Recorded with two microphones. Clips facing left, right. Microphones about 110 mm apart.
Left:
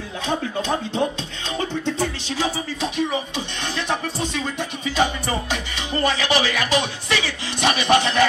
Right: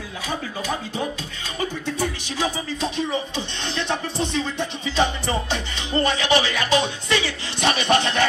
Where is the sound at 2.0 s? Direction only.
15° right (ahead or behind).